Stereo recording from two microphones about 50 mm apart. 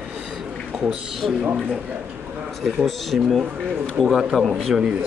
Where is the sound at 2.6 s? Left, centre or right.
Centre.